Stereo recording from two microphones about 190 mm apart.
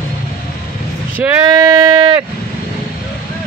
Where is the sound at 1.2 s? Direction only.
15° right (ahead or behind).